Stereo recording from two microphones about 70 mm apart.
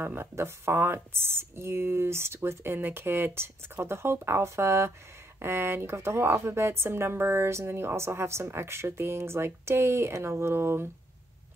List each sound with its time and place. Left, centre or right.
0.0 s speech: right